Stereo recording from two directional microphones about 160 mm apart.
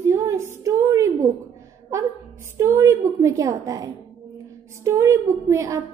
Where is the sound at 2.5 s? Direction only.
15° right (ahead or behind).